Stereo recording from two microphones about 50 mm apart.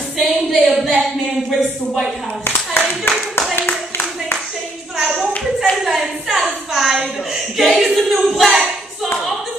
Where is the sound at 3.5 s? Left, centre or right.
Left.